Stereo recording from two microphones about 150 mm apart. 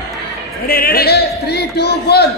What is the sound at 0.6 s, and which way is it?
A man's voice, 85° left.